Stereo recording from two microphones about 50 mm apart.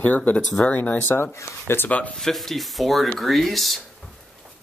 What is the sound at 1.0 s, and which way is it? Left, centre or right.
Speech, left.